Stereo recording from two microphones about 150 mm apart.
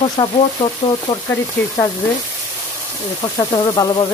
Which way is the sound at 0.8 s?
50° left (ahead or behind).